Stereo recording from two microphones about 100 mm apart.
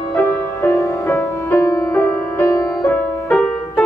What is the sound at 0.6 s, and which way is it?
Music, 30° left (ahead or behind).